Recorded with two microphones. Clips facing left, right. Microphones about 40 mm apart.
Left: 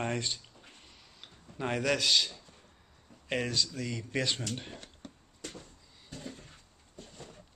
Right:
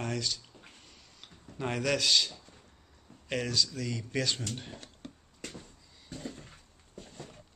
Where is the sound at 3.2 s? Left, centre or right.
Centre.